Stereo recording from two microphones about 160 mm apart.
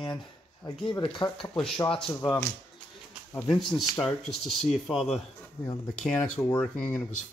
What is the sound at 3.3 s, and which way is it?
Speech, 5° left (ahead or behind).